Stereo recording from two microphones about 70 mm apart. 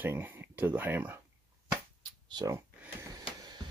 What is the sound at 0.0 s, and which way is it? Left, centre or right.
Speech, right.